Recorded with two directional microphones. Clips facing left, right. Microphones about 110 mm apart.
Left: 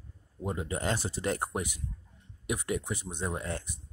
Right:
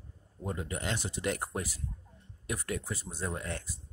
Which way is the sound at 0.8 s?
35° left (ahead or behind).